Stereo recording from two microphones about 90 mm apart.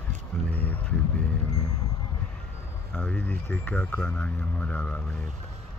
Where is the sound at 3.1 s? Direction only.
20° left (ahead or behind).